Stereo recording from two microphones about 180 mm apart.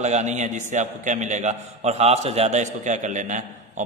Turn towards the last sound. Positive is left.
turn(degrees=-40)  # may be behind; listen again after turning